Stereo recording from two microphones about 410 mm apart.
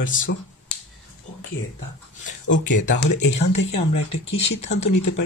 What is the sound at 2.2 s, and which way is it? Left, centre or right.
Speech, left.